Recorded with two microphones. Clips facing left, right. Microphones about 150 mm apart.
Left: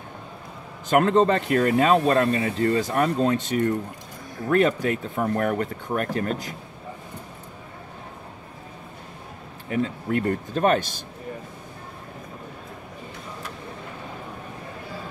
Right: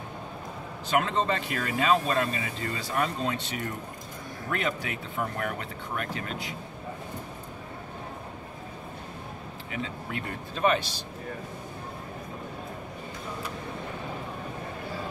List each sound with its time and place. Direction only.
0.8 s speech: 45° left (ahead or behind)
9.7 s speech: 45° left (ahead or behind)